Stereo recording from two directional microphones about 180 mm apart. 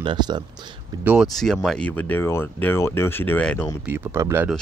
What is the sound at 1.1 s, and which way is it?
Speech, centre (ahead or behind).